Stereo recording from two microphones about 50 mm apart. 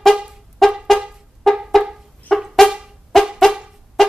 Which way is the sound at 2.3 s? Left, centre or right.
Left.